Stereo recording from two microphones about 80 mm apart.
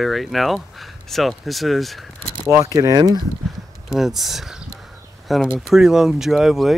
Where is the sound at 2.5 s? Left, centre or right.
Right.